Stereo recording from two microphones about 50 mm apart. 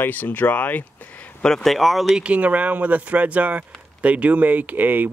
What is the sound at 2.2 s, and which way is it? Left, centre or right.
Speech, right.